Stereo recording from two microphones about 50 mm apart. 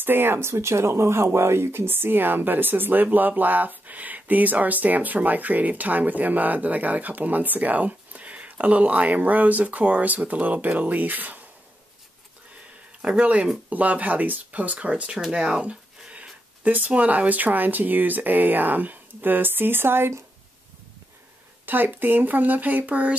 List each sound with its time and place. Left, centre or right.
0.0 s speech: right
13.0 s speech: right
21.6 s speech: right